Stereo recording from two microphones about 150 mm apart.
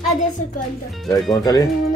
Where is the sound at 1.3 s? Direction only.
25° left (ahead or behind).